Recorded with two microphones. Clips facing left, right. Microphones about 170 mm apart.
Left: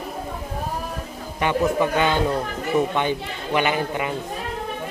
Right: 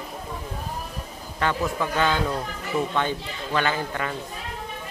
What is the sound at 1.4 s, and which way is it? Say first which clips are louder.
Speech: left 5 dB; 15° left (ahead or behind).